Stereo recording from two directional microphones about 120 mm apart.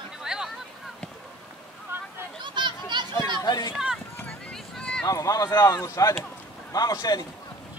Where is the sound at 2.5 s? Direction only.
40° right (ahead or behind).